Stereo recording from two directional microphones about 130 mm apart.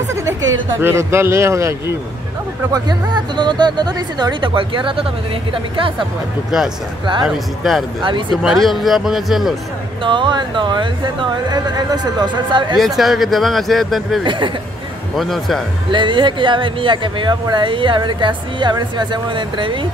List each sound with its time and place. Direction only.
0.1 s speech: 20° right (ahead or behind)
2.7 s speech: 35° right (ahead or behind)
7.2 s speech: centre (ahead or behind)
10.0 s speech: 40° right (ahead or behind)
12.7 s speech: centre (ahead or behind)
14.2 s speech: 40° right (ahead or behind)
15.1 s speech: centre (ahead or behind)
15.9 s speech: 40° right (ahead or behind)